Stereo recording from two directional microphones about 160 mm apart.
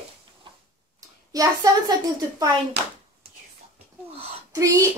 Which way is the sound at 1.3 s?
25° right (ahead or behind).